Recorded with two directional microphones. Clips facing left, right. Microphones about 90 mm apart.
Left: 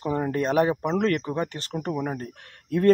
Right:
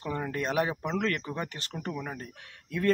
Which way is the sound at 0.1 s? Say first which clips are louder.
Left 6 dB; 35° left (ahead or behind).